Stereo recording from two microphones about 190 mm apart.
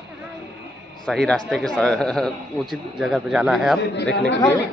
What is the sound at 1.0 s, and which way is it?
A man's voice, 5° left (ahead or behind).